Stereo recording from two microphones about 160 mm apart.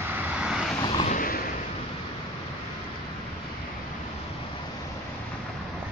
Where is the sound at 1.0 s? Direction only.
55° left (ahead or behind).